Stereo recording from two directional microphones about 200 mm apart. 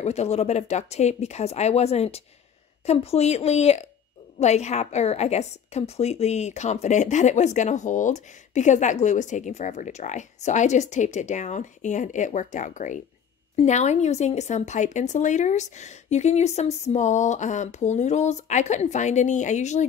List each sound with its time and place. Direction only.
0.0 s a woman's voice: 35° left (ahead or behind)